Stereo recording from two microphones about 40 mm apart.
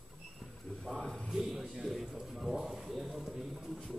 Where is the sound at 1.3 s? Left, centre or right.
Centre.